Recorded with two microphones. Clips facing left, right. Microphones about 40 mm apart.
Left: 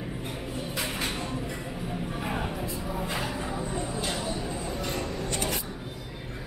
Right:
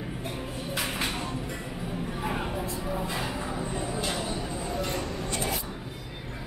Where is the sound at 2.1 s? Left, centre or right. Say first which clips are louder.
Right 1 dB; centre.